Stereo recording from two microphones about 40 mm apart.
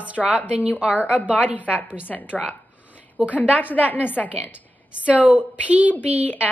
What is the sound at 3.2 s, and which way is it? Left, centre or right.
Speech, right.